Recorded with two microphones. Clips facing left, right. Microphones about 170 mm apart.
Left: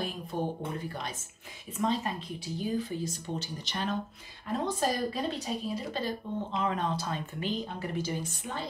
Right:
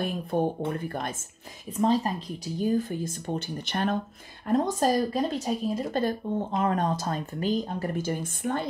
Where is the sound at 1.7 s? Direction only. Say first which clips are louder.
Right 6 dB; 35° right (ahead or behind); by 4.0 s 55° right (ahead or behind).